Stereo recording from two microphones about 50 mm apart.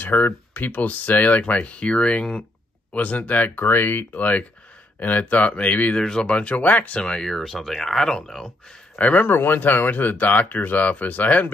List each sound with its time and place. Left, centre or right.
0.0 s speech: left
3.5 s speech: left
7.0 s speech: centre
7.2 s speech: centre
8.9 s speech: left
9.2 s speech: left